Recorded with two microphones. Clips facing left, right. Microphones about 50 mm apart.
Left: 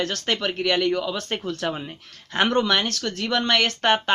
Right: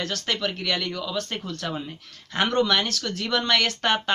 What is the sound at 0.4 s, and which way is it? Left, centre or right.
Speech, centre.